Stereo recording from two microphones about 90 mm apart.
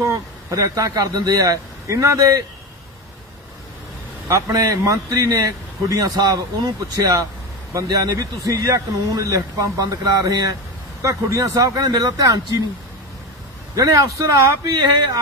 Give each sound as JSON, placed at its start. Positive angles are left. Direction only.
{"t": 0.0, "sound": "speech", "side_deg": -35}
{"t": 4.3, "sound": "speech", "side_deg": -40}
{"t": 13.7, "sound": "speech", "side_deg": -45}